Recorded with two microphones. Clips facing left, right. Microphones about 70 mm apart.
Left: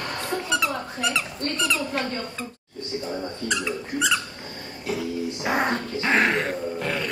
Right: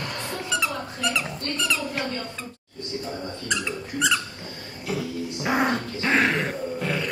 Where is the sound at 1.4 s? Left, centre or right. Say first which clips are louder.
Left 2 dB; left.